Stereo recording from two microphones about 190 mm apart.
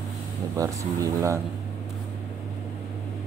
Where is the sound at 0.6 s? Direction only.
15° right (ahead or behind).